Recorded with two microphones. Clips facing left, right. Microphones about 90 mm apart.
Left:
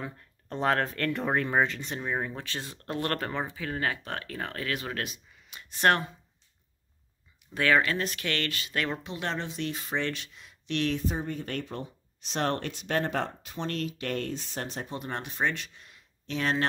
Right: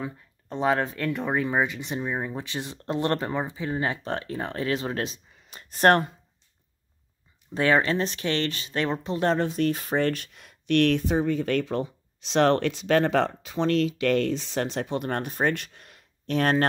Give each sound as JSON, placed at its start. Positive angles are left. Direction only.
{"t": 0.0, "sound": "speech", "side_deg": -5}
{"t": 7.5, "sound": "speech", "side_deg": -30}
{"t": 9.0, "sound": "speech", "side_deg": -40}
{"t": 15.0, "sound": "speech", "side_deg": -50}